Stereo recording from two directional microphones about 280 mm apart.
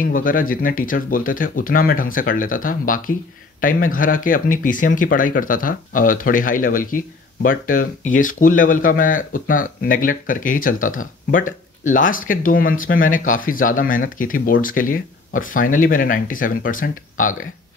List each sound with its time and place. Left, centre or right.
0.0 s speech: left